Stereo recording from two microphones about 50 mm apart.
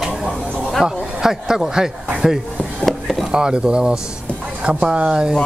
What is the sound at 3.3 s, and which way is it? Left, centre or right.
Speech, centre.